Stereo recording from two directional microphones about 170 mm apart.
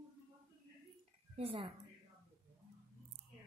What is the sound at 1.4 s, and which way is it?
Speech, 35° right (ahead or behind).